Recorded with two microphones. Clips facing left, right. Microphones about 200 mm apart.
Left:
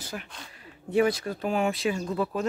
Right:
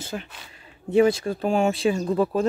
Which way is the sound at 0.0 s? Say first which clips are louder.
Right 5 dB; 25° right (ahead or behind).